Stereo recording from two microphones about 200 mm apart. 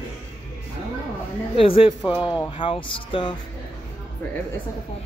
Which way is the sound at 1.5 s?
25° left (ahead or behind).